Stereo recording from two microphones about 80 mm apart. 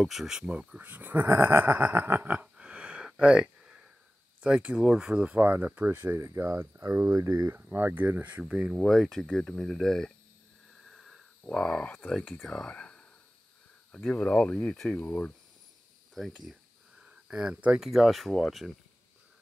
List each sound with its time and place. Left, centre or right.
0.0 s speech: centre; by 2.4 s right
2.4 s a sound: centre
4.6 s speech: centre
6.1 s speech: right
7.5 s speech: right
8.7 s speech: centre
10.9 s a sound: centre
12.4 s speech: centre
16.2 s speech: centre
17.0 s speech: centre
17.8 s speech: centre